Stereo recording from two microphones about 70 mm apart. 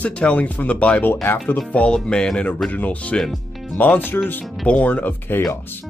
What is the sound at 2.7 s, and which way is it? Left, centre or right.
Speech, left.